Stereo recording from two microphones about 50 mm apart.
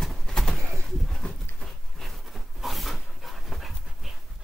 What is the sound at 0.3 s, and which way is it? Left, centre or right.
Pigeon, centre.